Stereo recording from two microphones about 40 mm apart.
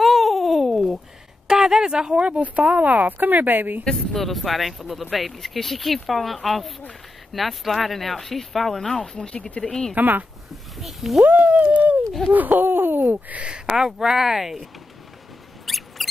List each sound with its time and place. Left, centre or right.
0.0 s babbling: centre
1.5 s a sound: centre
2.7 s speech: right
3.9 s speech: centre
9.1 s speech: left
9.6 s speech: centre
9.9 s speech: right
10.5 s a sound: centre
11.2 s speech: right
13.7 s speech: centre
15.6 s mouse: centre